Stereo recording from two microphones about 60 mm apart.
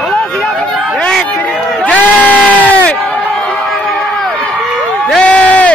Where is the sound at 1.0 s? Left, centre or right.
Centre.